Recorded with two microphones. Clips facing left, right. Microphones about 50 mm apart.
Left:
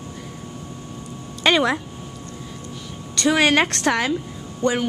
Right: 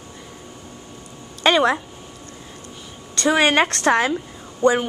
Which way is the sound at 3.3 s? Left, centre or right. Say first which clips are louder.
Right 1 dB; centre.